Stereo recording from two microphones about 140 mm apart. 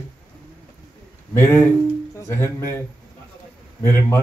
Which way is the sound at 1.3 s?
20° left (ahead or behind).